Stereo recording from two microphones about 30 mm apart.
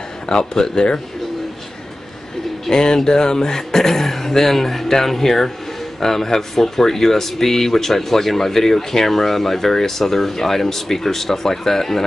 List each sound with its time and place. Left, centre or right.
0.3 s speech: left
2.7 s speech: left